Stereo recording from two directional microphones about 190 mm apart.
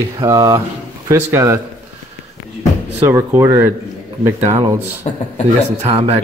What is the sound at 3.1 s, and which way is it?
Speech, 15° right (ahead or behind).